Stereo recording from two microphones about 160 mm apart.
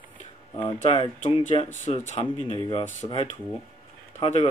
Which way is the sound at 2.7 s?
40° left (ahead or behind).